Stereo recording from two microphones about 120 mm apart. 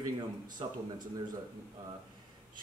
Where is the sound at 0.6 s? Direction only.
50° right (ahead or behind).